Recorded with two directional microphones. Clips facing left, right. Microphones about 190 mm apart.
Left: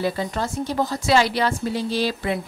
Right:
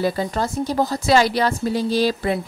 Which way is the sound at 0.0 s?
40° right (ahead or behind).